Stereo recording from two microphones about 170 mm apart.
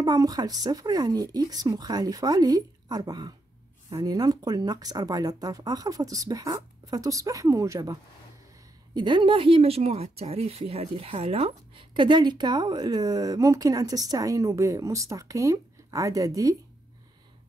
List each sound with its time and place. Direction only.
0.0 s speech: 20° right (ahead or behind)